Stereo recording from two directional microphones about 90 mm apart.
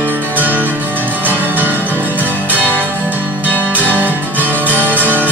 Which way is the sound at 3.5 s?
20° left (ahead or behind).